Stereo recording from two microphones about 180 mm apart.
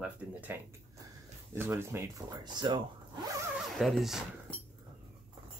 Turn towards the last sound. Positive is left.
turn(degrees=0)  # may be behind; listen again after turning